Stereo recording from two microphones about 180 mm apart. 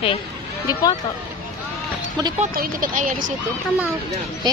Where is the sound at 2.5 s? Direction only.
50° right (ahead or behind).